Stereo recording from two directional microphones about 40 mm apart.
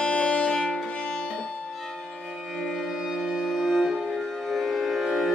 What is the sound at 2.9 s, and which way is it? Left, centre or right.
Music, centre.